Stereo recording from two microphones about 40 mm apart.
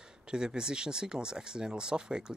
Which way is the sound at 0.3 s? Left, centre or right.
Centre.